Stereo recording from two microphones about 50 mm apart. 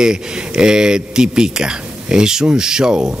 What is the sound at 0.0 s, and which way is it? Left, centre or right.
Speech, centre.